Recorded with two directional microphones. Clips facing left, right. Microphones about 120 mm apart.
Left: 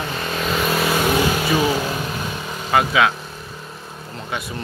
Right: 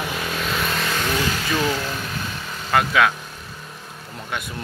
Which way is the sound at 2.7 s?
5° left (ahead or behind).